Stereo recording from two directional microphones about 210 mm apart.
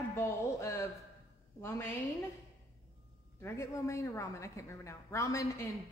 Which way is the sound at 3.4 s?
15° left (ahead or behind).